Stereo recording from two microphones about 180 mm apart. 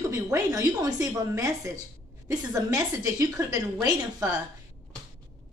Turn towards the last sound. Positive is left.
turn(degrees=-20)  # may be behind; listen again after turning